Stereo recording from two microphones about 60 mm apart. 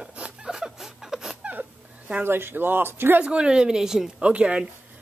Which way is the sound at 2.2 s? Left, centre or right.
Right.